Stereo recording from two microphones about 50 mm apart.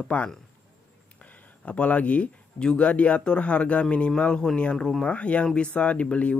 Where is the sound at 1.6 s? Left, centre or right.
Left.